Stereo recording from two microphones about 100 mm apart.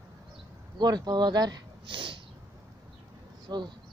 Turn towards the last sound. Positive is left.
turn(degrees=-45)  # may be behind; listen again after turning